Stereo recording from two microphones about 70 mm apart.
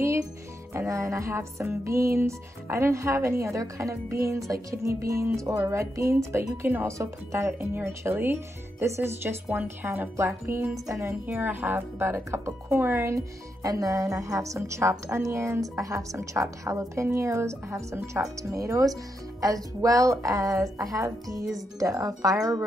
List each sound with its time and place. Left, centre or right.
0.7 s music: right
7.0 s speech: right
10.1 s speech: right
11.1 s speech: right
13.1 s music: right
15.6 s music: right
21.7 s speech: right